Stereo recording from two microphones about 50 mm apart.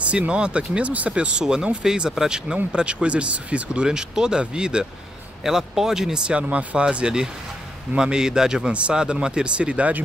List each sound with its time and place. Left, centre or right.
0.0 s speech: right